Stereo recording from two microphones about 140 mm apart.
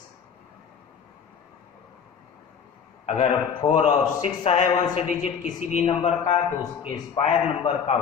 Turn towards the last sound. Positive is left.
turn(degrees=45)  # may be behind; listen again after turning